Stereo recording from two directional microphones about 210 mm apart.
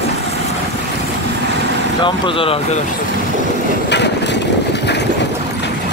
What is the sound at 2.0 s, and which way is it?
Speech, 25° left (ahead or behind).